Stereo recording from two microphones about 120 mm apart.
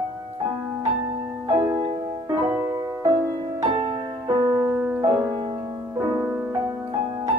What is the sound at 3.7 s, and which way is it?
Music, 40° right (ahead or behind).